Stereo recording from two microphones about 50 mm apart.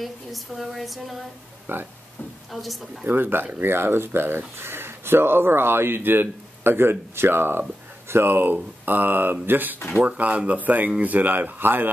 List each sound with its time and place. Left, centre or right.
0.0 s speech: centre
1.7 s speech: right
2.5 s speech: centre
3.1 s speech: right